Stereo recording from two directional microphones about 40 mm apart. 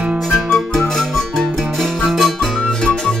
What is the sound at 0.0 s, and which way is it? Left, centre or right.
Music, right.